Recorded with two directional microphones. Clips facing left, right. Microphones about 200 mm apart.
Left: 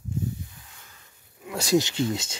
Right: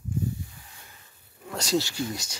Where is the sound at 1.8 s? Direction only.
20° left (ahead or behind).